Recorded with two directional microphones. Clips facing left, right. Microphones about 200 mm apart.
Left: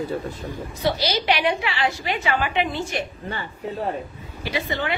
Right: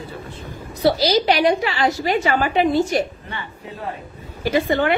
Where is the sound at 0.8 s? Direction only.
35° right (ahead or behind).